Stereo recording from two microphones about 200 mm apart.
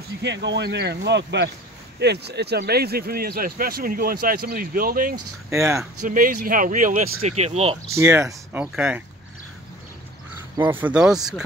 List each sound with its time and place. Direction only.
0.2 s speech: 60° right (ahead or behind)
5.5 s speech: 15° right (ahead or behind)
6.0 s speech: 45° right (ahead or behind)
7.9 s speech: 15° right (ahead or behind)
8.7 s speech: 5° right (ahead or behind)
10.7 s speech: 5° right (ahead or behind)